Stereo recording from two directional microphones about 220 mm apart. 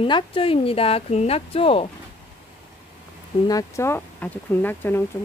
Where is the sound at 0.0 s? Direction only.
25° left (ahead or behind).